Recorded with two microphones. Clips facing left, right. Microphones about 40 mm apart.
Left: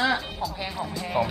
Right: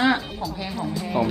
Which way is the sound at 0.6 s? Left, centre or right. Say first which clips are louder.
Right 3 dB; centre.